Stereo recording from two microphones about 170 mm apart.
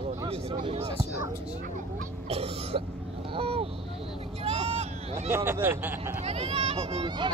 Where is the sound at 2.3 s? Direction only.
35° right (ahead or behind).